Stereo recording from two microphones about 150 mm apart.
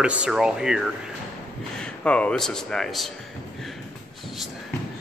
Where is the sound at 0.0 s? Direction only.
5° right (ahead or behind).